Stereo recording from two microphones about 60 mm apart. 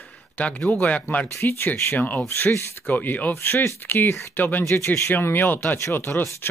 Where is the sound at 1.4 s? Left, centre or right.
Left.